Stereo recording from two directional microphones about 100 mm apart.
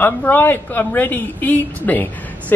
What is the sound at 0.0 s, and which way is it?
A woman's voice, 20° left (ahead or behind).